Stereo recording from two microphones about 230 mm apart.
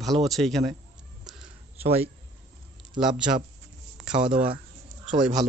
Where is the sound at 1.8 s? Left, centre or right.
Right.